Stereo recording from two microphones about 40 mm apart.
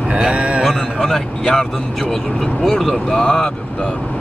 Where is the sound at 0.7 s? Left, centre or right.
Centre.